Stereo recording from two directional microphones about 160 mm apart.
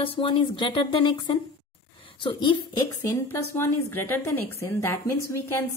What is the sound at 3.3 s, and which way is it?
A woman's voice, 15° left (ahead or behind).